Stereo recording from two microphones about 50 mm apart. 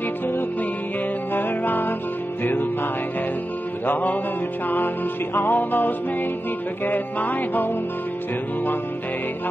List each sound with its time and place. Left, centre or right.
1.3 s music: left
3.8 s music: left